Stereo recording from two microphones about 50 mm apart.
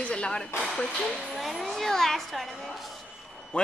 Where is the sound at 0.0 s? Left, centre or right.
Left.